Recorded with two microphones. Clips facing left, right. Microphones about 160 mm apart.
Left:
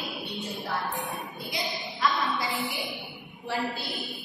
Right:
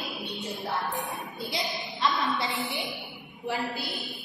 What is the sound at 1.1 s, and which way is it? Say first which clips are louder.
Child singing: right 1 dB; centre (ahead or behind).